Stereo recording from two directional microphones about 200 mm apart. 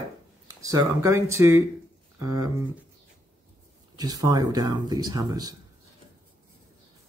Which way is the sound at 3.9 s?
20° right (ahead or behind).